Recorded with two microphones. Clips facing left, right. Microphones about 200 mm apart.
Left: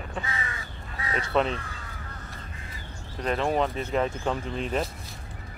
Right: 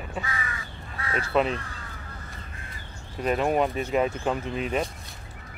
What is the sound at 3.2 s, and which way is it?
Speech, 10° right (ahead or behind).